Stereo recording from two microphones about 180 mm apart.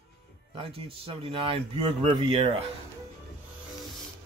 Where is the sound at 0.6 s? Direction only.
30° right (ahead or behind).